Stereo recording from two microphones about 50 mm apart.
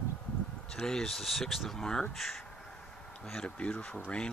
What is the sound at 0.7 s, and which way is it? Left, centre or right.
Speech, centre.